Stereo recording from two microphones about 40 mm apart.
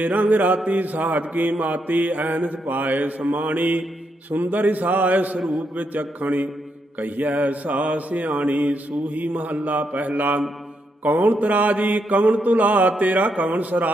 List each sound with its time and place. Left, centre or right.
0.0 s mantra: right
5.4 s a man's voice: centre
5.8 s mantra: right